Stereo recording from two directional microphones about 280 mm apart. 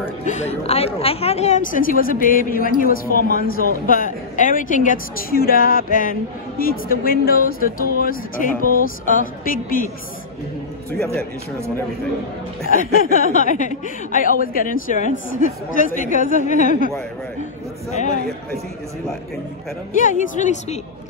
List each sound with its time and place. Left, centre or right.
0.2 s a woman's voice: left
8.5 s a man's voice: right
8.8 s a woman's voice: left
12.7 s a woman's voice: left
18.1 s a man's voice: right
20.0 s a woman's voice: left